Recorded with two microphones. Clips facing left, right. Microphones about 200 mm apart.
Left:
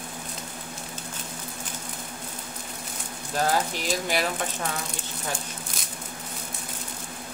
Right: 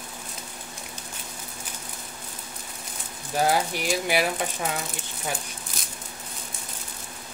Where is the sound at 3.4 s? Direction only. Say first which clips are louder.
Right 2 dB; 10° right (ahead or behind).